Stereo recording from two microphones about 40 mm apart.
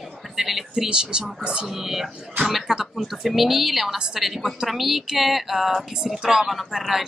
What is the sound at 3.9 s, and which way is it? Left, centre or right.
Speech, centre.